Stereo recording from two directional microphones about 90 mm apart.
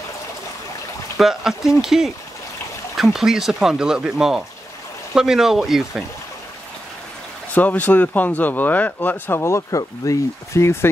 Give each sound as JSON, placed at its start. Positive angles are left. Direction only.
{"t": 1.1, "sound": "speech", "side_deg": -5}
{"t": 7.5, "sound": "speech", "side_deg": 15}